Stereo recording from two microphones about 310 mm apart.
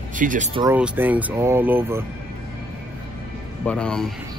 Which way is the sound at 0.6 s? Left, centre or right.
Centre.